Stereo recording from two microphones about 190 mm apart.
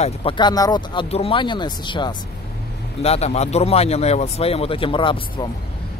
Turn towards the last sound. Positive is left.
turn(degrees=25)  # may be behind; listen again after turning